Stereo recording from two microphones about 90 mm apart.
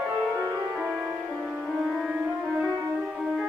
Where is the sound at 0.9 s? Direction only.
20° right (ahead or behind).